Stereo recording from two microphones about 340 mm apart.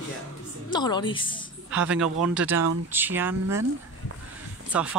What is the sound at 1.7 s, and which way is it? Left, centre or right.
Speech, centre.